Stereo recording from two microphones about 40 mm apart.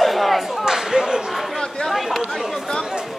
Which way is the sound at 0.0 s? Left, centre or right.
Centre.